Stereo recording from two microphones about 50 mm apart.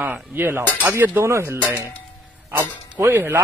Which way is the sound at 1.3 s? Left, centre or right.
Right.